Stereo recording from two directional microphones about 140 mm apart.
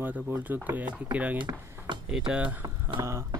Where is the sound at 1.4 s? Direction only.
35° right (ahead or behind).